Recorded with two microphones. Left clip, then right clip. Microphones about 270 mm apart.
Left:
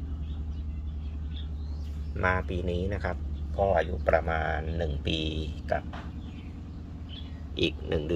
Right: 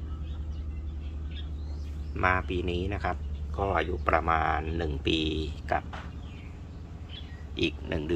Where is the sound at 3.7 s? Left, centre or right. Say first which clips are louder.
Right 1 dB; right.